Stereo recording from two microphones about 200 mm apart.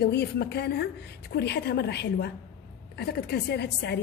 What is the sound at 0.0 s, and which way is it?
Speech, 55° left (ahead or behind).